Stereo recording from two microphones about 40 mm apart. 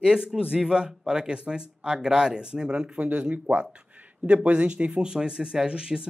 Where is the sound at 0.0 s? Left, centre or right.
Centre.